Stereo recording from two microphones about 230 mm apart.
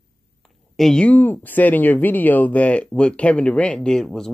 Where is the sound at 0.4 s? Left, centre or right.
Centre.